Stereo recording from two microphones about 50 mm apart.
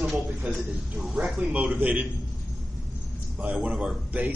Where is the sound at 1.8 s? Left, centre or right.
Right.